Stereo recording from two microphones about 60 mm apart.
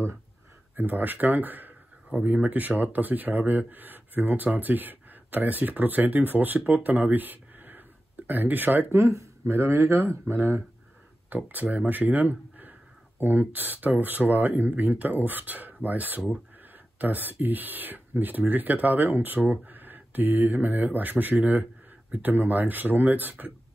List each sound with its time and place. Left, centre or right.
0.7 s speech: right
8.9 s speech: right
9.5 s speech: right
10.0 s speech: right
11.2 s speech: right